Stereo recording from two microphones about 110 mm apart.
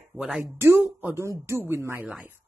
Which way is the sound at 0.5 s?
20° right (ahead or behind).